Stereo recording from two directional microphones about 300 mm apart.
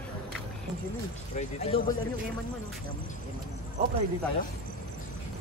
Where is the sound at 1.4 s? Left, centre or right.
Centre.